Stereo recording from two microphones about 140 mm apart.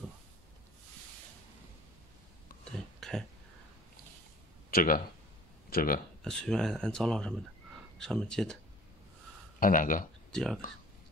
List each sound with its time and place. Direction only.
2.6 s a sound: 5° left (ahead or behind)
4.6 s speech: 90° left
6.2 s speech: 5° left (ahead or behind)
9.6 s speech: 75° left (ahead or behind)
10.3 s speech: 5° left (ahead or behind)